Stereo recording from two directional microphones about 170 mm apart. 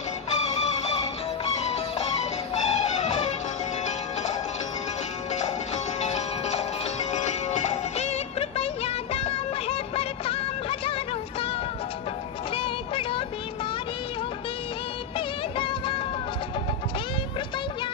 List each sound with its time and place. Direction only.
2.5 s music: 40° left (ahead or behind)
5.9 s music: 40° left (ahead or behind)
12.5 s vehicle: 30° left (ahead or behind)
15.1 s music: 30° left (ahead or behind)